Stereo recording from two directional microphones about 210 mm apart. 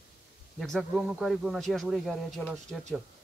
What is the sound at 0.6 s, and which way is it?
A man's voice, centre (ahead or behind).